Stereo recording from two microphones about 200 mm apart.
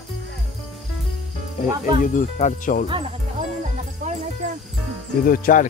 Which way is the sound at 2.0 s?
40° left (ahead or behind).